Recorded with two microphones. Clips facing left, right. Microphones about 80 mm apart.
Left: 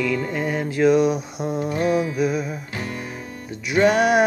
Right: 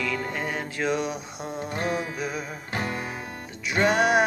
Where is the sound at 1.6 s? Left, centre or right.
Right.